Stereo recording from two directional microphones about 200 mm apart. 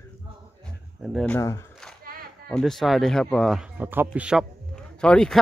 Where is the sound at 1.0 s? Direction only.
5° left (ahead or behind).